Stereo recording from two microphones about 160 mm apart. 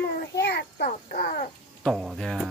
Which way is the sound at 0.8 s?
60° left (ahead or behind).